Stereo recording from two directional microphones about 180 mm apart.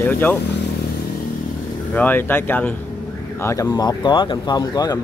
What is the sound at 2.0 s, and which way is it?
Speech, 10° left (ahead or behind).